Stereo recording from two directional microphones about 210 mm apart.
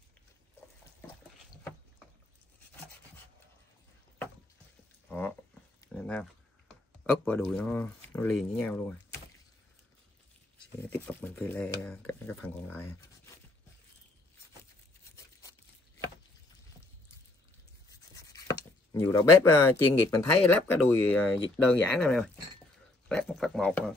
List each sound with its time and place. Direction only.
5.0 s livestock: 5° left (ahead or behind)
6.7 s speech: 5° left (ahead or behind)
10.6 s speech: 5° left (ahead or behind)
17.8 s a sound: 15° left (ahead or behind)
19.9 s speech: 15° left (ahead or behind)